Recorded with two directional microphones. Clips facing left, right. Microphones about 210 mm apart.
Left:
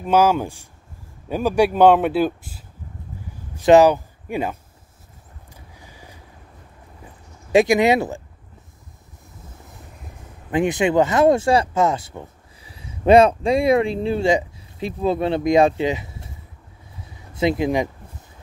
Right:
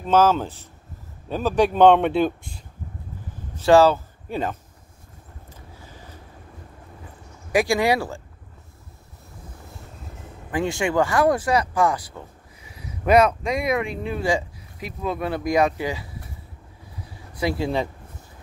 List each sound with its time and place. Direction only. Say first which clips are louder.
0.0 s speech: left 1 dB; 10° left (ahead or behind)
3.5 s speech: left 3 dB; 15° left (ahead or behind)
5.5 s vehicle: right 1 dB; 15° left (ahead or behind)
7.5 s speech: left 5 dB; 20° left (ahead or behind)
10.5 s speech: left 5 dB; 20° left (ahead or behind)
17.0 s a sound: left 5 dB; 25° left (ahead or behind)